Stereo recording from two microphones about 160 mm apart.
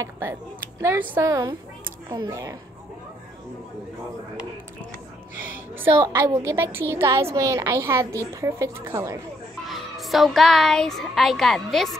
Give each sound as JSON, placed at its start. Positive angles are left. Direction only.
{"t": 0.0, "sound": "speech", "side_deg": -20}
{"t": 5.9, "sound": "speech", "side_deg": -30}
{"t": 6.1, "sound": "a woman's voice", "side_deg": -20}
{"t": 9.7, "sound": "speech", "side_deg": 0}